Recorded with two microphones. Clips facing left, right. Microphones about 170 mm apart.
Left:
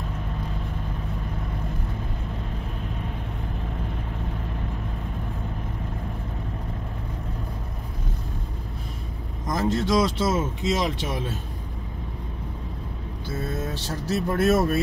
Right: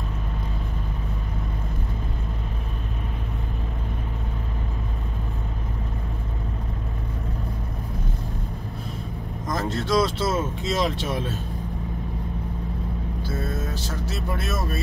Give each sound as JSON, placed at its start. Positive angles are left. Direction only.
{"t": 9.5, "sound": "speech", "side_deg": 15}
{"t": 13.7, "sound": "speech", "side_deg": 35}